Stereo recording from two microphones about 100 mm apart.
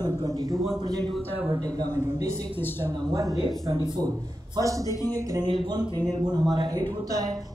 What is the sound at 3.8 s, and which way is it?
Speech, 50° right (ahead or behind).